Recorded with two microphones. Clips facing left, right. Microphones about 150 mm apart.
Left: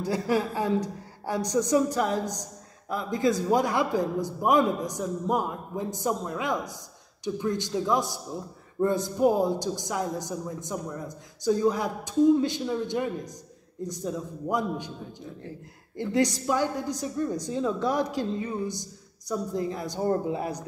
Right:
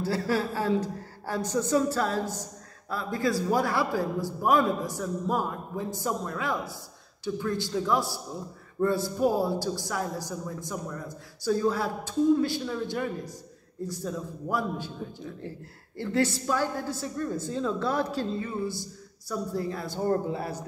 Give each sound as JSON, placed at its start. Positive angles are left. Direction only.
{"t": 0.0, "sound": "a woman's voice", "side_deg": 15}
{"t": 16.0, "sound": "a woman's voice", "side_deg": 15}